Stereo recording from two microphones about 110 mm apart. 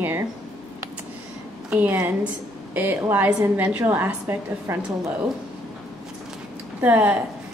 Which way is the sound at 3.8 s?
20° right (ahead or behind).